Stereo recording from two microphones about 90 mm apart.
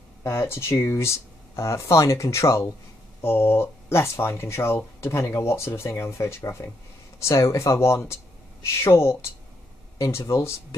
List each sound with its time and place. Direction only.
0.2 s speech: 30° left (ahead or behind)